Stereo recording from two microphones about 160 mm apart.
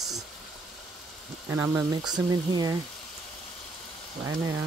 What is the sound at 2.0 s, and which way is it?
Speech, 25° right (ahead or behind).